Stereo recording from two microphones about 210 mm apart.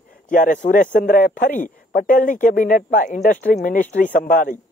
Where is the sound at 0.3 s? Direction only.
40° left (ahead or behind).